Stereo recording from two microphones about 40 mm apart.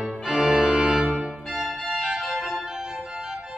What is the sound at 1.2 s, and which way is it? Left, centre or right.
Organ, centre.